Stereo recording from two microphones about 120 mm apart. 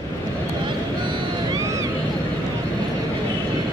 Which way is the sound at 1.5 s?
25° right (ahead or behind).